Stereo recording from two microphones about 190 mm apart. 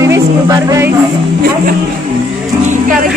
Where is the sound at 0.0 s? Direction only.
15° right (ahead or behind).